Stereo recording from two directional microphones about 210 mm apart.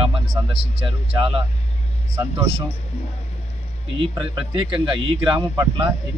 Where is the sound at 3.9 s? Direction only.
25° right (ahead or behind).